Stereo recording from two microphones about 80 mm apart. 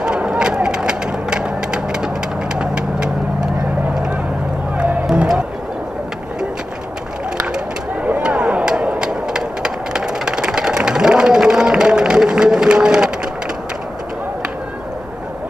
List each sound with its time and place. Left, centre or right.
0.0 s vehicle: centre
4.7 s run: centre
5.0 s music: centre
7.3 s a sound: centre